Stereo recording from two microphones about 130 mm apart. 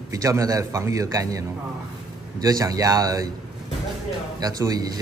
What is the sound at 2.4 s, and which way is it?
Speech, 30° right (ahead or behind).